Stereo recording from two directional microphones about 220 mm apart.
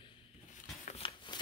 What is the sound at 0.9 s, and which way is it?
Shuffling cards, 25° left (ahead or behind).